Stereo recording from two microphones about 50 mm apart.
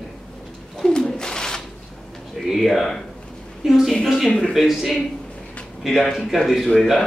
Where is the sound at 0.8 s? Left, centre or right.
Centre.